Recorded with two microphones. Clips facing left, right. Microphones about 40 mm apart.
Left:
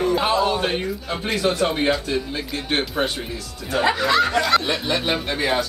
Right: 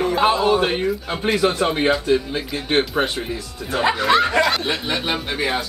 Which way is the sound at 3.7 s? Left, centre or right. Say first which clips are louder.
Even; centre.